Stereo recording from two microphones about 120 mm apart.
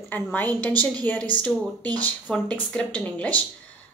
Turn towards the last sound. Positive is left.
turn(degrees=10)  # may be behind; listen again after turning